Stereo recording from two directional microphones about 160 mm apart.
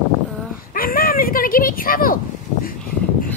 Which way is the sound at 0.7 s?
65° left (ahead or behind).